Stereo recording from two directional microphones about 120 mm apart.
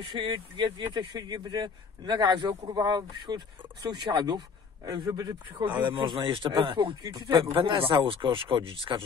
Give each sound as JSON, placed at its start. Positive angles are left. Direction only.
{"t": 0.0, "sound": "speech", "side_deg": -40}